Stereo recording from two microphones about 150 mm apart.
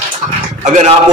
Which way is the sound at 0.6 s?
50° right (ahead or behind).